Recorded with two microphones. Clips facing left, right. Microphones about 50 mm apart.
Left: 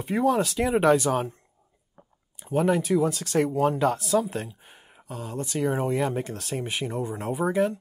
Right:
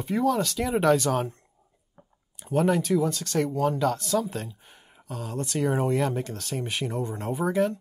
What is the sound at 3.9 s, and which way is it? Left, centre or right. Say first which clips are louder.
Speech: left 2 dB; centre.